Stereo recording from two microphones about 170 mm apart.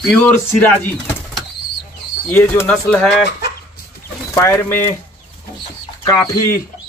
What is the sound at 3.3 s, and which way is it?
Chicken, 75° left (ahead or behind).